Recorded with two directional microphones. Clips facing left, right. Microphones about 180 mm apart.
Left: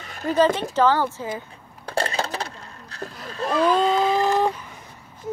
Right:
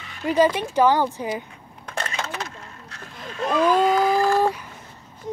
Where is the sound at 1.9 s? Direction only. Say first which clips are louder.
Left 5 dB; 35° left (ahead or behind).